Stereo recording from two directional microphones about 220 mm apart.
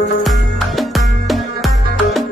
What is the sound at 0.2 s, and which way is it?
Music, centre (ahead or behind).